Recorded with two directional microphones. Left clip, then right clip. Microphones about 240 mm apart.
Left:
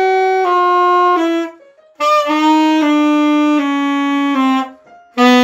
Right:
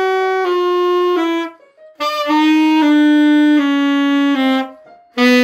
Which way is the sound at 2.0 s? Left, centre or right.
Centre.